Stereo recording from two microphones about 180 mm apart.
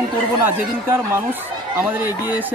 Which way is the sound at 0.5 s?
15° right (ahead or behind).